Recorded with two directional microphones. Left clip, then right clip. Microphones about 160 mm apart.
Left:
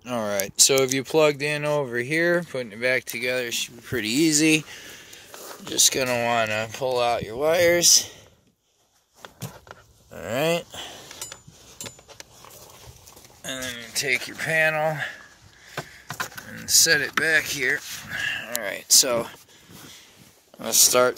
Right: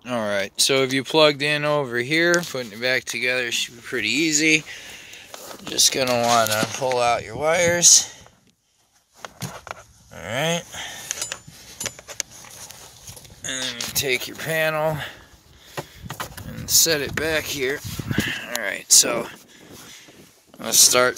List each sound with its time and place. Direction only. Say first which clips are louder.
0.0 s speech: right 3 dB; 5° left (ahead or behind)
3.9 s speech: right 1 dB; 40° left (ahead or behind)
5.7 s speech: right 2 dB; 20° left (ahead or behind)
6.0 s speech: right 4 dB; 10° left (ahead or behind)
6.4 s speech: right 3 dB; 20° left (ahead or behind)
10.1 s speech: even; 35° left (ahead or behind)
13.4 s a sound: right 3 dB; 20° left (ahead or behind)
13.9 s speech: left 1 dB; 20° right (ahead or behind)
16.9 s speech: left 2 dB; 15° right (ahead or behind)
18.6 s speech: right 2 dB; 20° left (ahead or behind)
20.5 s speech: right 2 dB; centre (ahead or behind)